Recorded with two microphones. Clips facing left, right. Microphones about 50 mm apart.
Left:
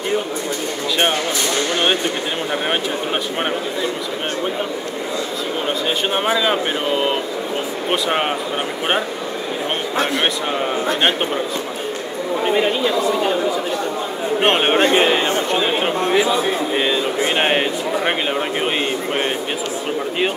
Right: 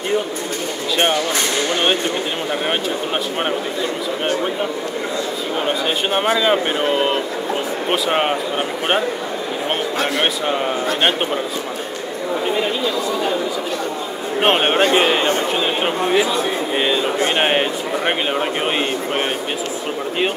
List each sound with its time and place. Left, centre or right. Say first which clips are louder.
0.9 s speech: right 1 dB; centre
5.9 s speech: left 1 dB; centre
10.1 s speech: right 1 dB; centre
12.4 s speech: left 4 dB; centre
14.4 s a man's voice: right 1 dB; centre
15.5 s chatter: left 1 dB; centre
16.7 s speech: even; centre